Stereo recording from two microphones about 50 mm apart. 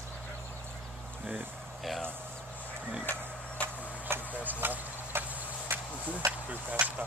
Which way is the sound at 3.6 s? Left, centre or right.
Right.